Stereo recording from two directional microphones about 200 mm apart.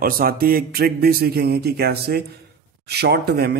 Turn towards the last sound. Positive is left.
turn(degrees=-55)  # may be behind; listen again after turning